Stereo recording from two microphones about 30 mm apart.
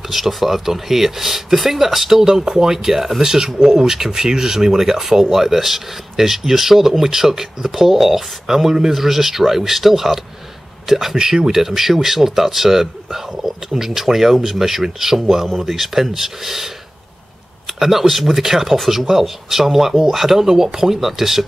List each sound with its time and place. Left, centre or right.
0.1 s speech: centre
11.1 s speech: right